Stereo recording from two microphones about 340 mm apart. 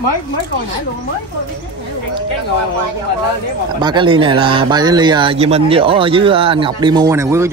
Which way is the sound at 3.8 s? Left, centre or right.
Centre.